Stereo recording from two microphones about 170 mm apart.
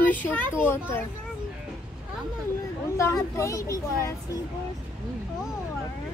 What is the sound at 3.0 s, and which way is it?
Speech, 15° left (ahead or behind).